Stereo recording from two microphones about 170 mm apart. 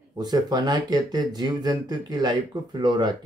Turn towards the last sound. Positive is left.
turn(degrees=-25)  # may be behind; listen again after turning